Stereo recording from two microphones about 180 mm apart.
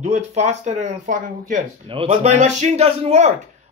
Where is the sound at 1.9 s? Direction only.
30° right (ahead or behind).